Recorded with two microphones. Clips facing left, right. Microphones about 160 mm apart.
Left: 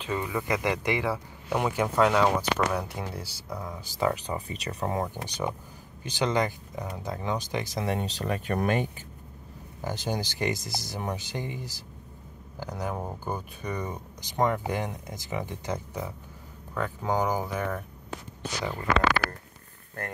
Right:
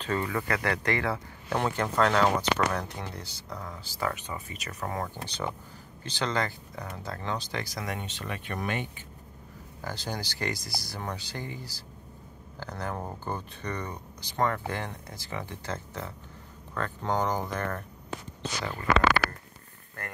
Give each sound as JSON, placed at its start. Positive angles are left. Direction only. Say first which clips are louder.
{"t": 0.0, "sound": "speech", "louder": "even", "side_deg": 10}
{"t": 4.1, "sound": "speech", "louder": "left 6 dB", "side_deg": 35}
{"t": 9.8, "sound": "speech", "louder": "left 4 dB", "side_deg": 20}